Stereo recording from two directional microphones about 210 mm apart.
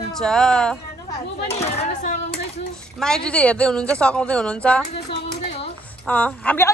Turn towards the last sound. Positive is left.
turn(degrees=10)  # may be behind; listen again after turning